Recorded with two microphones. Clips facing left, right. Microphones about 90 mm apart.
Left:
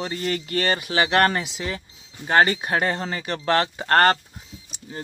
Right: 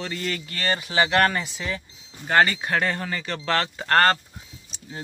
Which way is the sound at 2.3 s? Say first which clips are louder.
Left 1 dB; 20° left (ahead or behind).